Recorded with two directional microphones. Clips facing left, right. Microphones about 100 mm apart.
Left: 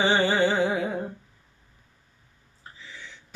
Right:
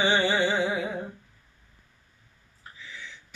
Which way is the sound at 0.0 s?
35° left (ahead or behind).